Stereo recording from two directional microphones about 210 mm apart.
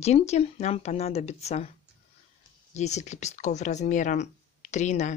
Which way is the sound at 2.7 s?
30° left (ahead or behind).